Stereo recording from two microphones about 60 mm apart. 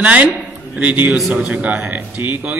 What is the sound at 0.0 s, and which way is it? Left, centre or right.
Speech, right.